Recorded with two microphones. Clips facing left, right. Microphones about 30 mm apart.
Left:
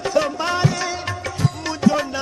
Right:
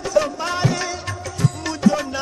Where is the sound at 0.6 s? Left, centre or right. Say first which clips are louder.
Left 1 dB; centre.